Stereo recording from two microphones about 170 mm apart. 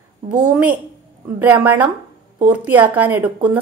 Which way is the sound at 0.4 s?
5° right (ahead or behind).